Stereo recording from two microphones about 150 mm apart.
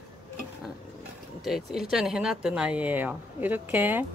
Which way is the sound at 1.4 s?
Centre (ahead or behind).